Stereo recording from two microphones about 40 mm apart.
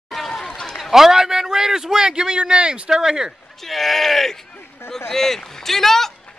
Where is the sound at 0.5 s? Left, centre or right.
Centre.